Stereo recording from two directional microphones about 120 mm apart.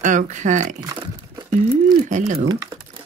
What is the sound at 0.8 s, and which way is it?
Crumpling, 40° right (ahead or behind).